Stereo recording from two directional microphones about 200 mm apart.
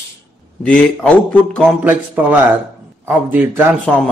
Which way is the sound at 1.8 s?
10° right (ahead or behind).